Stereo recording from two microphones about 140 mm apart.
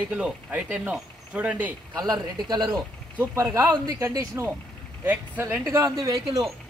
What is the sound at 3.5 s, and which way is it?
Speech, 25° right (ahead or behind).